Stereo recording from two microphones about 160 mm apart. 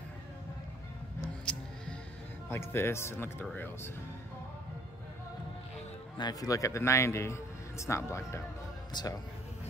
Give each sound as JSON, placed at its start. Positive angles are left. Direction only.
{"t": 1.4, "sound": "music", "side_deg": 5}
{"t": 2.5, "sound": "a man's voice", "side_deg": 15}
{"t": 6.1, "sound": "a man's voice", "side_deg": 25}